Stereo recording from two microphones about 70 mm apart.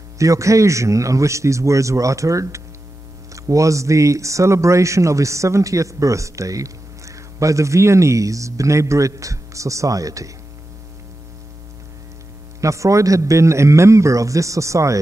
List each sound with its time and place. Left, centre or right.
0.2 s speech: right
12.5 s speech: right